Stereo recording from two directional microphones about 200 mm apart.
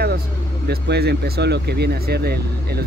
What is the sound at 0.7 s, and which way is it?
Speech, 55° right (ahead or behind).